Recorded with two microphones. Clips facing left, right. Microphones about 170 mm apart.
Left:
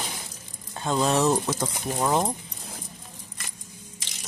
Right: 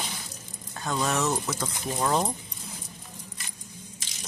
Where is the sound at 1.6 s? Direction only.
15° left (ahead or behind).